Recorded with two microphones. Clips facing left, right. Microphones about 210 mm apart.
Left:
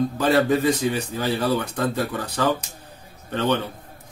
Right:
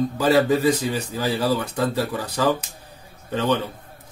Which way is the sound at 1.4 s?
5° right (ahead or behind).